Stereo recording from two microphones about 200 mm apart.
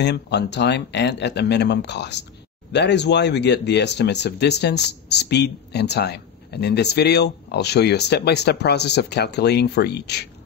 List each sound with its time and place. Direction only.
0.0 s speech: 55° left (ahead or behind)